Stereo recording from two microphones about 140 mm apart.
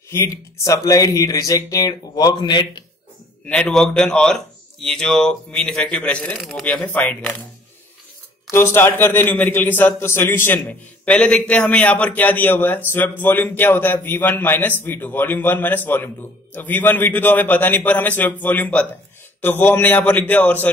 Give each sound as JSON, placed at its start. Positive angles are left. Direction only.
{"t": 0.1, "sound": "speech", "side_deg": 20}
{"t": 3.4, "sound": "speech", "side_deg": 5}
{"t": 8.5, "sound": "a man's voice", "side_deg": 20}